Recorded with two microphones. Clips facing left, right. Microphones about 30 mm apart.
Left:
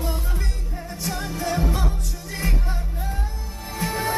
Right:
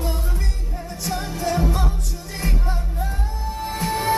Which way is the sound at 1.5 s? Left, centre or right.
Centre.